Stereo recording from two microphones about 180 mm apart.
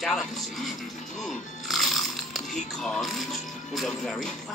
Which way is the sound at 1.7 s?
Centre (ahead or behind).